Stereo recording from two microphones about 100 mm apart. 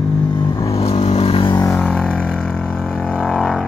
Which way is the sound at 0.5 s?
85° left.